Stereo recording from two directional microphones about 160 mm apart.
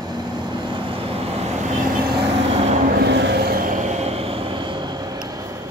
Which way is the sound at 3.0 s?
90° right.